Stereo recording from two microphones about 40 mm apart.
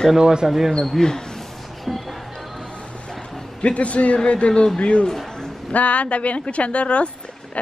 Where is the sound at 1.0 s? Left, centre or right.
Centre.